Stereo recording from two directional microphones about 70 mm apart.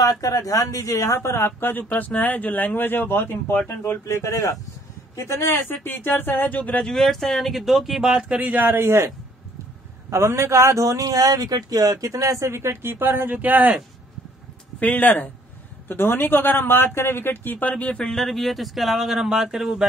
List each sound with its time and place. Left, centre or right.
0.0 s speech: left
4.3 s speech: left
5.1 s speech: left
6.9 s a man's voice: centre; by 13.7 s right
14.8 s speech: left
18.1 s speech: centre